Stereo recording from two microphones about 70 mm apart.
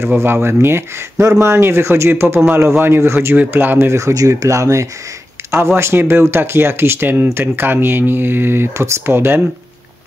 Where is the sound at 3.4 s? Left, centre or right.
Right.